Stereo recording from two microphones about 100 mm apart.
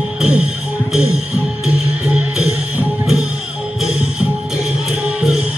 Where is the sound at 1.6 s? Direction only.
10° right (ahead or behind).